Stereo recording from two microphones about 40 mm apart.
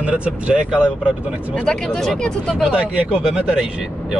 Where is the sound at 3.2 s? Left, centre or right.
Centre.